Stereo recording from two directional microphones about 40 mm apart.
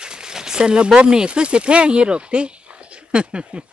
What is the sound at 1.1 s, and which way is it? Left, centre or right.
Speech, centre.